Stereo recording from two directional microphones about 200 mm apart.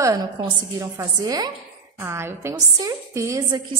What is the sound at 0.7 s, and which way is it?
A woman's voice, 15° right (ahead or behind).